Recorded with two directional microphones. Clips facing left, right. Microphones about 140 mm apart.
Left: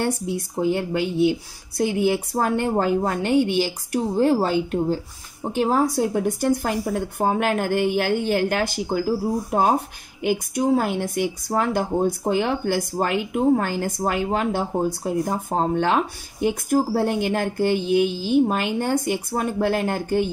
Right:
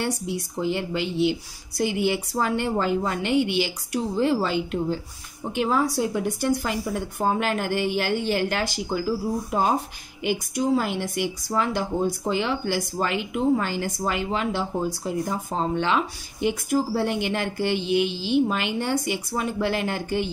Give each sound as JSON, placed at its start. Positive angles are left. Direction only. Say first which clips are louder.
{"t": 0.6, "sound": "speech", "louder": "left 4 dB", "side_deg": 50}